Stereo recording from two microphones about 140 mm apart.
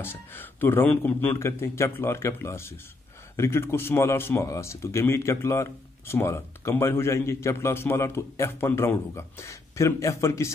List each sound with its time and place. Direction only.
0.0 s a man's voice: 15° left (ahead or behind)